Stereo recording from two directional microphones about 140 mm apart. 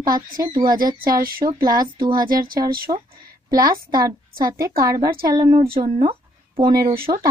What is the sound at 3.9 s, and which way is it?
A woman's voice, 25° right (ahead or behind).